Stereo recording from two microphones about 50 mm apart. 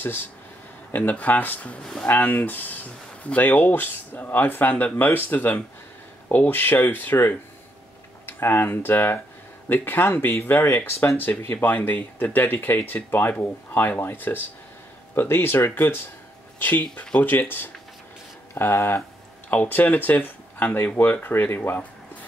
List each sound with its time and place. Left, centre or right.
0.0 s speech: left
1.1 s speech: left
10.9 s speech: left
11.1 s speech: left
19.5 s speech: left